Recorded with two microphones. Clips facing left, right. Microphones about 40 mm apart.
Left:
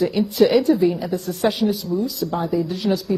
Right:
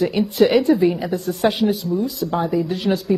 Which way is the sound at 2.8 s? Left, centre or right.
Right.